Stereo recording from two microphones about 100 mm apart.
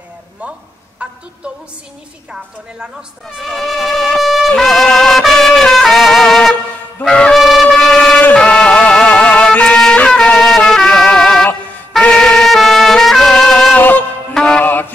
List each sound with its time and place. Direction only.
2.8 s shofar: 5° right (ahead or behind)
7.0 s wind instrument: 10° left (ahead or behind)
8.2 s music: 15° left (ahead or behind)
14.6 s mantra: 20° left (ahead or behind)